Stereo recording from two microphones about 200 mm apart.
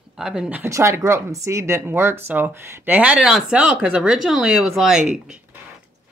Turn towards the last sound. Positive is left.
turn(degrees=-5)  # may be behind; listen again after turning